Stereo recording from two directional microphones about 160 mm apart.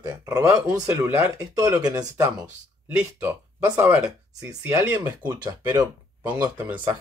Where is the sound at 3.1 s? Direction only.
15° right (ahead or behind).